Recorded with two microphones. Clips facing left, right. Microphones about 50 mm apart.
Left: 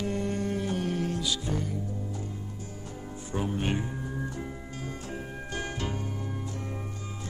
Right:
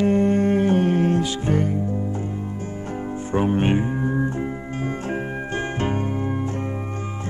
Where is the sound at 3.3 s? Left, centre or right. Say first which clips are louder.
Right 10 dB; right.